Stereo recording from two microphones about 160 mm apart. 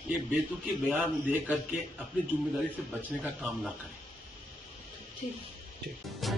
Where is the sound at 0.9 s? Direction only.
10° right (ahead or behind).